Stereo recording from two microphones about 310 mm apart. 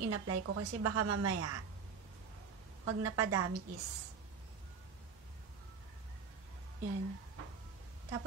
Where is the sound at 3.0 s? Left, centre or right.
Right.